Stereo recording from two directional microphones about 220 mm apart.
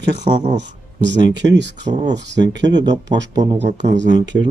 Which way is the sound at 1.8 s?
30° right (ahead or behind).